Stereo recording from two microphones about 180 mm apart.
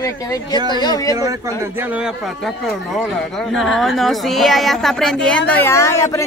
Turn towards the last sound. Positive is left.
turn(degrees=15)  # may be behind; listen again after turning